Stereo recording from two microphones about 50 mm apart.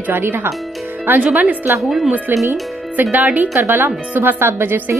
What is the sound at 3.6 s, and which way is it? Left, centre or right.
Speech, right.